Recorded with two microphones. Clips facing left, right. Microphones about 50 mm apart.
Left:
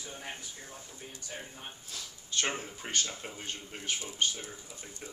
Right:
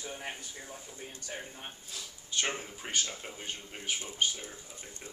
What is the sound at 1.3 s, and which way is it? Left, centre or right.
Speech, centre.